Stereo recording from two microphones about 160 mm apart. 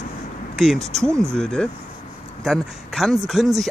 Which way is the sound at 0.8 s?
45° right (ahead or behind).